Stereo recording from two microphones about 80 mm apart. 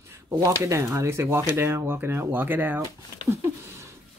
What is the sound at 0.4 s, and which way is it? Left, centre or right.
Speech, right.